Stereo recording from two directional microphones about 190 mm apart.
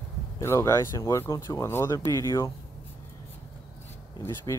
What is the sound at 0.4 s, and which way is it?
Speech, 15° left (ahead or behind).